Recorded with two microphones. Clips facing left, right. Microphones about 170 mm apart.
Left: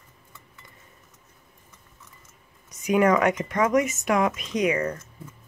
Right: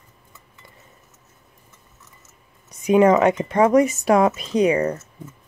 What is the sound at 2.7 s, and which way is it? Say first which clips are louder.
Speech: right 5 dB; 30° right (ahead or behind).